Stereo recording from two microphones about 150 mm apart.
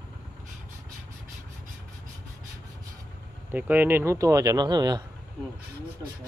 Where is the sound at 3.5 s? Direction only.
10° right (ahead or behind); by 5.0 s 30° right (ahead or behind).